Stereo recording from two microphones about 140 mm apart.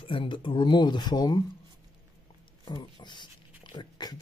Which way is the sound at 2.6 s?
30° left (ahead or behind).